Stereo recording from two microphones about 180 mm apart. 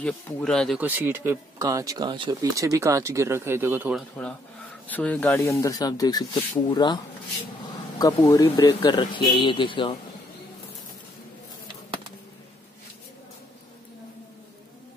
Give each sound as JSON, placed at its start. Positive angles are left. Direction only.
{"t": 0.0, "sound": "speech", "side_deg": 5}
{"t": 0.7, "sound": "speech", "side_deg": -10}
{"t": 4.8, "sound": "speech", "side_deg": 10}
{"t": 8.0, "sound": "speech", "side_deg": 20}